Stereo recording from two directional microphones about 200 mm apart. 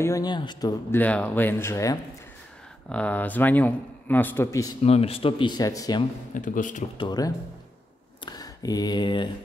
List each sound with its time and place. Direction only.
0.0 s speech: 20° left (ahead or behind)
1.0 s speech: 5° left (ahead or behind)
4.8 s speech: 30° left (ahead or behind)
6.3 s speech: 40° left (ahead or behind)
7.0 s speech: 20° left (ahead or behind)